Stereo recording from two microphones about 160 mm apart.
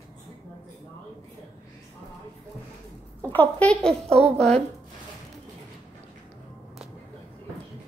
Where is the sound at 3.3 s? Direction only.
10° left (ahead or behind).